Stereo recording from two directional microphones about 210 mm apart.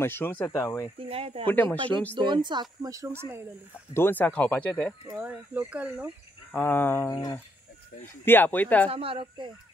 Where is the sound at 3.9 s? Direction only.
10° left (ahead or behind).